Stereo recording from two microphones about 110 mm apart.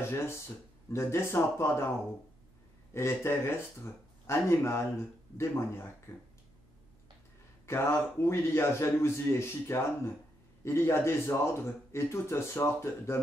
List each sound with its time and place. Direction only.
0.0 s a man's voice: 25° left (ahead or behind)
2.9 s a man's voice: 25° left (ahead or behind)
7.6 s a man's voice: 25° left (ahead or behind)